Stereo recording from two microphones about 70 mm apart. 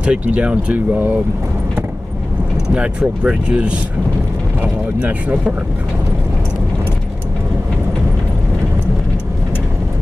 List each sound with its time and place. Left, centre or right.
0.0 s speech: centre
0.9 s speech: right
2.7 s speech: centre